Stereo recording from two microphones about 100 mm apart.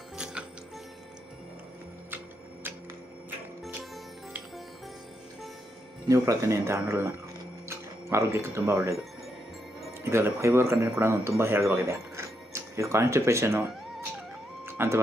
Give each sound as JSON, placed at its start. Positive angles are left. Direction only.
{"t": 0.2, "sound": "music", "side_deg": -10}
{"t": 6.0, "sound": "speech", "side_deg": -35}
{"t": 10.0, "sound": "speech", "side_deg": -25}
{"t": 14.7, "sound": "a sound", "side_deg": -25}